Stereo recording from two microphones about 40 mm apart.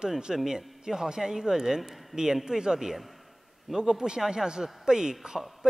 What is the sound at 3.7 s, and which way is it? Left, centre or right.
A man's voice, centre.